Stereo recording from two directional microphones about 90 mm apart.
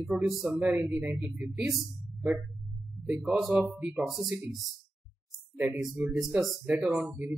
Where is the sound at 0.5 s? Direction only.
20° right (ahead or behind).